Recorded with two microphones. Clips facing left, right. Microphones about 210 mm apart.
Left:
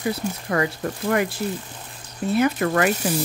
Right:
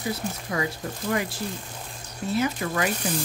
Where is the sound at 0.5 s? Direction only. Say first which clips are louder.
Left 5 dB; 65° left (ahead or behind).